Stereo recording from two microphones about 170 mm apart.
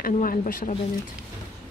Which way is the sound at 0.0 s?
55° left (ahead or behind).